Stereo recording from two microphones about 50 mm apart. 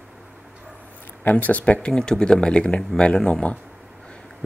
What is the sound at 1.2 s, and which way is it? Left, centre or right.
Speech, left.